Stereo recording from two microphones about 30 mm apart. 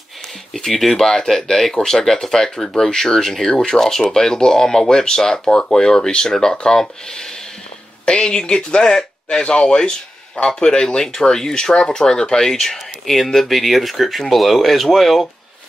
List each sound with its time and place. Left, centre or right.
0.7 s speech: centre
11.0 s speech: centre